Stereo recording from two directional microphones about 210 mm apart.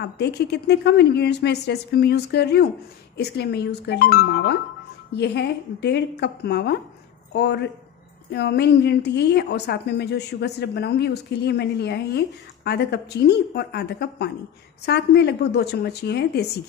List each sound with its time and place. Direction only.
0.0 s a woman's voice: 50° left (ahead or behind)